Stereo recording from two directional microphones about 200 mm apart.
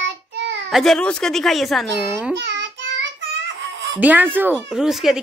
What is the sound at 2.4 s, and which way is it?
Child singing, 65° right (ahead or behind).